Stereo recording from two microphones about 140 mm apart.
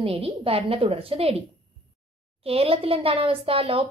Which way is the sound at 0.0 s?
45° right (ahead or behind).